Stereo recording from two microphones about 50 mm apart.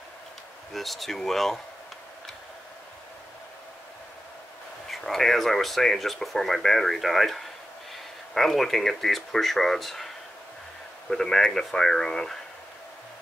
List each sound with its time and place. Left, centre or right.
0.7 s speech: centre
4.8 s speech: centre
11.1 s speech: centre